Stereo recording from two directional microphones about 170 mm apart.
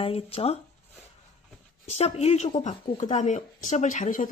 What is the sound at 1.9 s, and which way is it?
A woman's voice, 40° left (ahead or behind).